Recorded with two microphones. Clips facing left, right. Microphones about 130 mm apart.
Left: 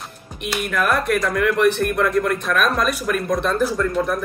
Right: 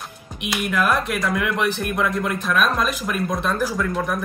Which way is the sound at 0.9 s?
50° left (ahead or behind).